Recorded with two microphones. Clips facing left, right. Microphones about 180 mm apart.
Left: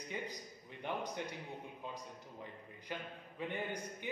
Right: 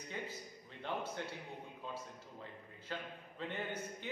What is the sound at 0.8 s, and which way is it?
A man's voice, 15° left (ahead or behind).